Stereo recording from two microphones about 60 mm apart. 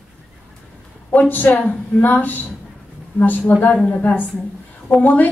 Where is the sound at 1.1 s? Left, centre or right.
Left.